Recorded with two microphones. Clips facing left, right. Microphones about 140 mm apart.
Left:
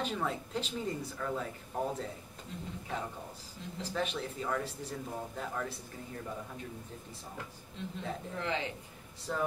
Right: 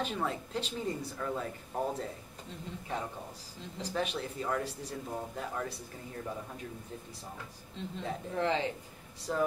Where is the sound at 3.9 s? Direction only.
5° right (ahead or behind).